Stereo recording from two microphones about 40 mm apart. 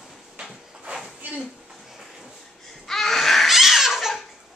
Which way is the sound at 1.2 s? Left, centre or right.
Right.